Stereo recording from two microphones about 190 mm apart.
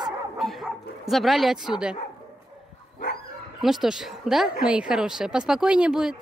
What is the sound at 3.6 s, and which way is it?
Speech, centre (ahead or behind).